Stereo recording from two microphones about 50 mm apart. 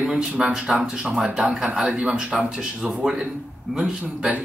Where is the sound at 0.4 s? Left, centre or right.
Centre.